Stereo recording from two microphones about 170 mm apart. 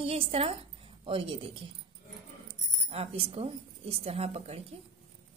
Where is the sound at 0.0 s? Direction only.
35° right (ahead or behind).